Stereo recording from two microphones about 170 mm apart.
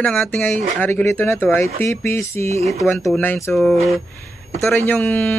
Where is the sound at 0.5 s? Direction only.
45° right (ahead or behind).